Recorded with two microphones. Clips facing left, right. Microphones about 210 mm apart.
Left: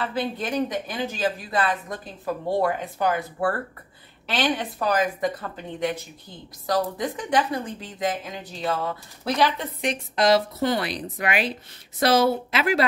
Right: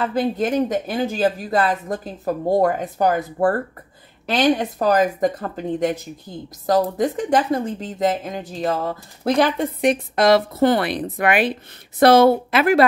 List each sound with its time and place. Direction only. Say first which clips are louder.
0.0 s a woman's voice: right 7 dB; 45° right (ahead or behind)